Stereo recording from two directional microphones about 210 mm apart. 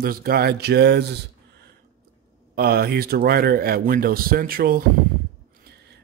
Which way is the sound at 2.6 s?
45° right (ahead or behind).